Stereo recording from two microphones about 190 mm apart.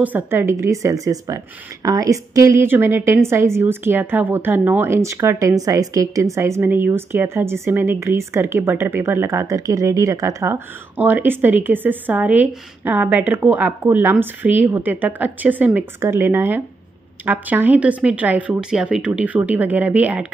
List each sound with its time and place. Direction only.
0.0 s a woman's voice: 10° right (ahead or behind)